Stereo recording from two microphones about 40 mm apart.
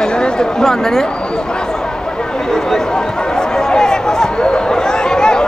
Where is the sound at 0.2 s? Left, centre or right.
Centre.